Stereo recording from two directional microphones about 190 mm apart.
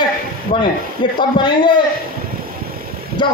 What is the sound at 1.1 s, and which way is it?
Speech, 25° left (ahead or behind).